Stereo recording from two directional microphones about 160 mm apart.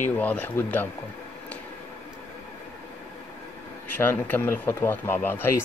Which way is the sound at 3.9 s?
10° left (ahead or behind).